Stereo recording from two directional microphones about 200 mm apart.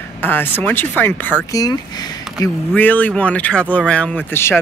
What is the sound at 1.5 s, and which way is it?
Speech, 20° left (ahead or behind).